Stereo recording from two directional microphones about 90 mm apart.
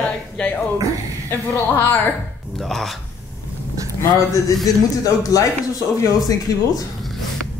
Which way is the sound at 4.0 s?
35° left (ahead or behind).